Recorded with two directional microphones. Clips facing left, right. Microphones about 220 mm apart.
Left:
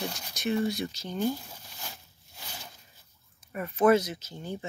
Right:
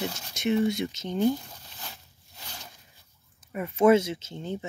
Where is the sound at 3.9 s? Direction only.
25° right (ahead or behind).